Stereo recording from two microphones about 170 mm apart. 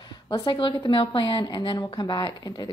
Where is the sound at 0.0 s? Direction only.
25° left (ahead or behind).